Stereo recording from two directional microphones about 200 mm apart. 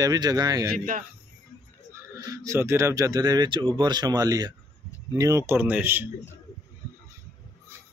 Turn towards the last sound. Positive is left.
turn(degrees=-10)  # may be behind; listen again after turning